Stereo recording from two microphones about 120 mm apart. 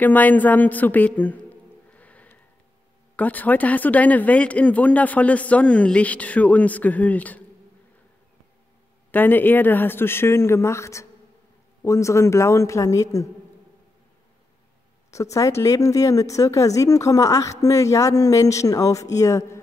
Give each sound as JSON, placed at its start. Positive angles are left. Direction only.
{"t": 0.0, "sound": "a man's voice", "side_deg": 15}
{"t": 9.1, "sound": "speech", "side_deg": 15}
{"t": 15.0, "sound": "speech", "side_deg": 25}